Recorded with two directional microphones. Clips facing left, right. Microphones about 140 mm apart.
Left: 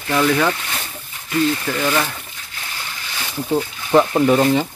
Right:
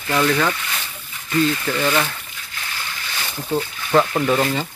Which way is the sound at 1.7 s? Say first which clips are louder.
Even; 10° left (ahead or behind).